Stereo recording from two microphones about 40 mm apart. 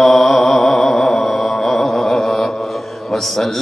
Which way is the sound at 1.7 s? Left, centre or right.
Centre.